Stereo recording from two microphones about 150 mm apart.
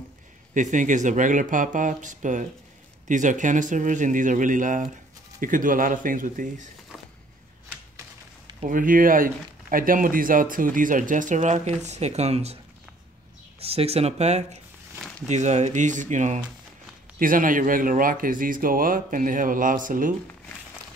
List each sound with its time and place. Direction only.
0.6 s speech: 55° right (ahead or behind)
8.6 s speech: 65° right (ahead or behind); by 12.5 s 45° right (ahead or behind)
13.6 s speech: 40° right (ahead or behind)
17.2 s speech: 65° right (ahead or behind)